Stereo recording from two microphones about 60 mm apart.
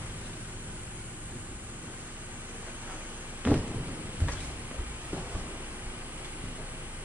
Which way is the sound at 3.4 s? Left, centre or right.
Right.